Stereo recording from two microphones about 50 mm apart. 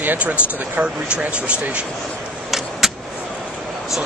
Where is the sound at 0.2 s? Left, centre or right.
Right.